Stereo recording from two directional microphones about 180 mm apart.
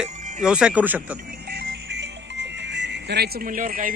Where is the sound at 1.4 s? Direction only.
65° right (ahead or behind).